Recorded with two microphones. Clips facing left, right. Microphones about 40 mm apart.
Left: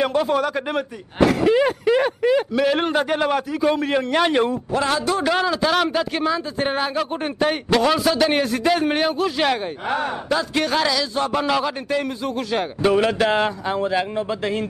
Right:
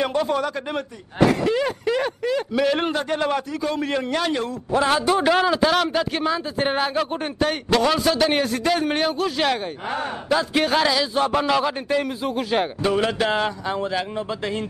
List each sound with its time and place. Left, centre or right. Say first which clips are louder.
0.0 s a man's voice: left 2 dB; centre
2.5 s a man's voice: left 2 dB; centre
4.1 s a man's voice: left 5 dB; left
4.7 s a man's voice: right 3 dB; centre
5.3 s a man's voice: even; centre
10.3 s a man's voice: right 2 dB; centre
12.8 s a man's voice: left 7 dB; centre